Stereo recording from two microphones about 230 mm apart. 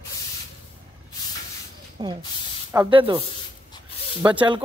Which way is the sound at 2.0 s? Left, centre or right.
Right.